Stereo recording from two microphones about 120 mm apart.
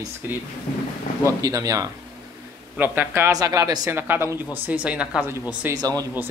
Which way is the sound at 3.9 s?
20° right (ahead or behind).